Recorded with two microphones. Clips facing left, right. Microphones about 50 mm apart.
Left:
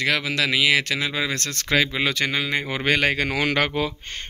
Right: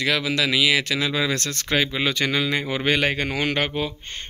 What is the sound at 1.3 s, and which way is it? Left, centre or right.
Speech, left.